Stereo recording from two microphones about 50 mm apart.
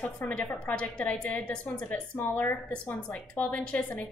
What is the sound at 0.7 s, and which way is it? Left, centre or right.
A woman's voice, left.